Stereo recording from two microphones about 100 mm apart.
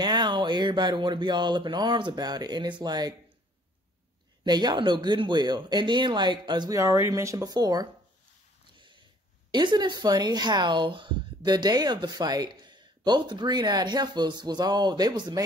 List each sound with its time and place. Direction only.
0.0 s speech: 45° right (ahead or behind)
4.5 s speech: 45° right (ahead or behind)
6.7 s speech: 30° right (ahead or behind)
8.7 s a sound: 55° right (ahead or behind)
9.5 s speech: 50° right (ahead or behind)